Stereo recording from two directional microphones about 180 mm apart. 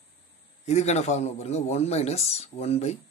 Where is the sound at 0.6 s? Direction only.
40° left (ahead or behind).